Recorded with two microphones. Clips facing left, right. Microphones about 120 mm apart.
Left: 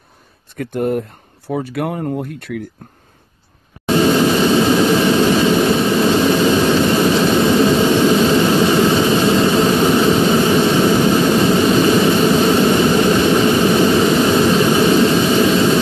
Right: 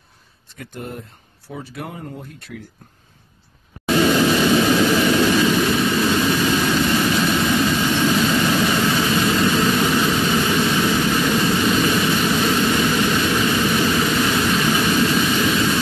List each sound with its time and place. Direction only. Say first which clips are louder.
0.6 s speech: left 14 dB; 60° left (ahead or behind)
3.8 s vehicle: left 3 dB; 30° left (ahead or behind)